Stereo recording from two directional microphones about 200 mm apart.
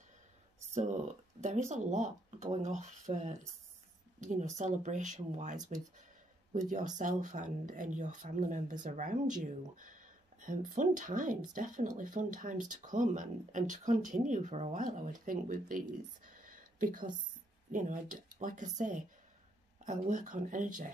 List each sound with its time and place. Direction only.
0.7 s speech: 35° right (ahead or behind)
16.3 s a sound: 45° right (ahead or behind)
17.6 s speech: 40° right (ahead or behind)